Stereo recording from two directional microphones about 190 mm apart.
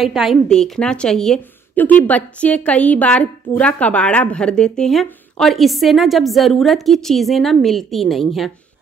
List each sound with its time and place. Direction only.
0.0 s a woman's voice: centre (ahead or behind)